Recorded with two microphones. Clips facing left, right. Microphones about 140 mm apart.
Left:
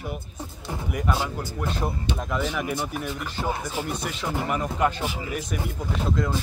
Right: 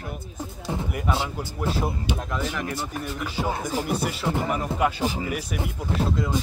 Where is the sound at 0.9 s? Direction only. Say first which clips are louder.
Left 3 dB; 5° right (ahead or behind).